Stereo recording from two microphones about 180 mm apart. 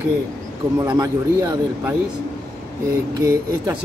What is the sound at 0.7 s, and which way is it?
Speech, 20° right (ahead or behind).